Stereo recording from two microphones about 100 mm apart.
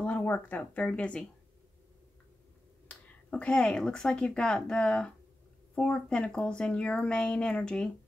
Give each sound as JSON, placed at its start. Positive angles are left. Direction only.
{"t": 0.0, "sound": "speech", "side_deg": 15}
{"t": 2.9, "sound": "speech", "side_deg": 10}